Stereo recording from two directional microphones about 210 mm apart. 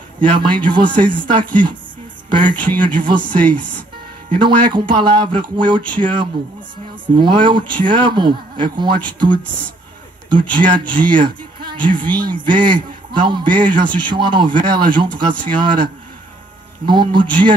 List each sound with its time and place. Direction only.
0.2 s speech: 25° right (ahead or behind)